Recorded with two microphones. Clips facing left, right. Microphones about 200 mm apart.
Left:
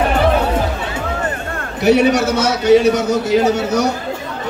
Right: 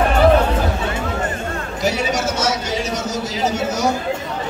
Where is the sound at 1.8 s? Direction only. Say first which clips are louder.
Left 9 dB; 60° left (ahead or behind).